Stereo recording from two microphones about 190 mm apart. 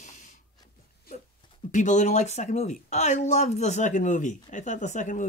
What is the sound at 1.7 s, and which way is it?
Speech, 40° left (ahead or behind).